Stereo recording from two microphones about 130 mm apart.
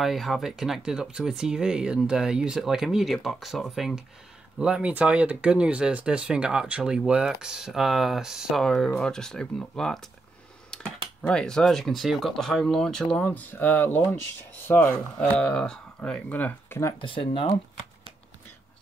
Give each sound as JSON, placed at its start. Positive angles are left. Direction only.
{"t": 0.0, "sound": "speech", "side_deg": 0}
{"t": 17.0, "sound": "speech", "side_deg": 40}